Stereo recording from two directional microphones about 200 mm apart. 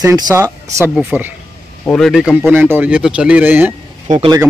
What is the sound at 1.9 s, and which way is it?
Speech, centre (ahead or behind).